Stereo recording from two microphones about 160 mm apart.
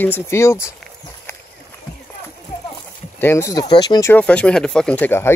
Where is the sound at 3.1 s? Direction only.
15° left (ahead or behind).